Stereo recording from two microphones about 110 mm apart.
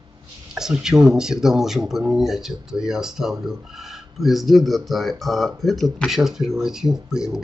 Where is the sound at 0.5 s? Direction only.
5° right (ahead or behind).